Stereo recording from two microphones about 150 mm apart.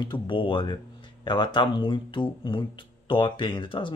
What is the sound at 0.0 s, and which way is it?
Speech, 30° left (ahead or behind).